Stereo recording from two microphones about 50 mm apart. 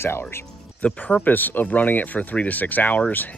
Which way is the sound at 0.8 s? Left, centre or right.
Left.